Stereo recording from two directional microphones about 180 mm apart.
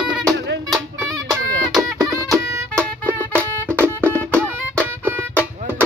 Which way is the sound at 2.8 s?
10° left (ahead or behind).